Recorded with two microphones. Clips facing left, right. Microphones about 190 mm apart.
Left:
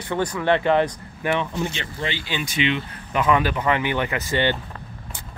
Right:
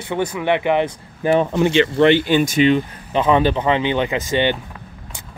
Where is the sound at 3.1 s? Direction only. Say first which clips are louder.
Right 5 dB; 25° right (ahead or behind).